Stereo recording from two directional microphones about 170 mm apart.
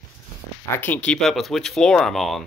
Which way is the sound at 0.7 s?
10° left (ahead or behind).